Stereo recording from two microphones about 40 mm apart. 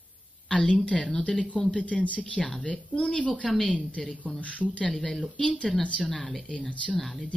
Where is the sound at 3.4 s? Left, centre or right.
Centre.